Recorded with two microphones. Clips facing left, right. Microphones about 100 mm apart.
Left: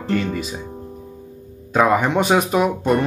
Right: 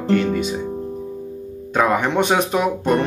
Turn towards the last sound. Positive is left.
turn(degrees=5)  # may be behind; listen again after turning